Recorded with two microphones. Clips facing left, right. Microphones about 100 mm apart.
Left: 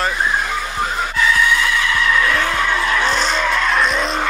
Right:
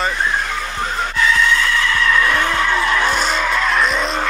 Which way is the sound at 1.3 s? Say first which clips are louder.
Even; 10° left (ahead or behind).